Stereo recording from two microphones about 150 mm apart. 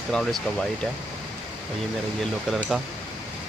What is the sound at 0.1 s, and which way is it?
Speech, 5° left (ahead or behind).